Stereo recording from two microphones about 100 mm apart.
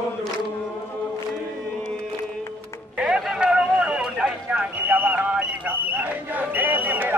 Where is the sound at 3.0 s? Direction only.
10° right (ahead or behind).